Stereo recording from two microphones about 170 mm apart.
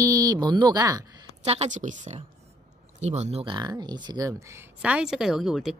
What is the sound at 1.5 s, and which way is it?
A woman's voice, 45° right (ahead or behind).